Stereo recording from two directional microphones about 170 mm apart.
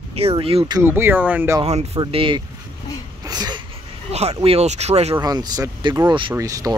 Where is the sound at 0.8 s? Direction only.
15° right (ahead or behind).